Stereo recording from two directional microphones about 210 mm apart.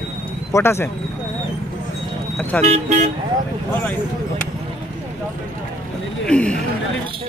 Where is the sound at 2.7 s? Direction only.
30° right (ahead or behind).